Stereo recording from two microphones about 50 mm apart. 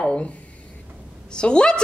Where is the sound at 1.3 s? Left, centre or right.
Centre.